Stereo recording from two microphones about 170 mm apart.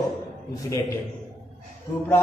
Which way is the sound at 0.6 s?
15° left (ahead or behind).